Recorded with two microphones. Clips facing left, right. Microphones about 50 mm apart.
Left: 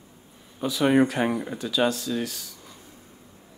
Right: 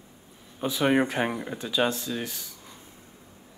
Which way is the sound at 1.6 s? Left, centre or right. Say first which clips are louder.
Left 1 dB; right.